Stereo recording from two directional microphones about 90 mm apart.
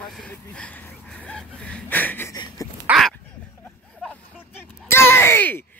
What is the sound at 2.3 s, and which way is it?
Dog, 50° left (ahead or behind).